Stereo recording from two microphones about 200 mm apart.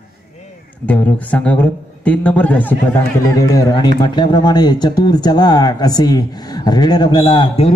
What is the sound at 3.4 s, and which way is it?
Speech, 20° left (ahead or behind).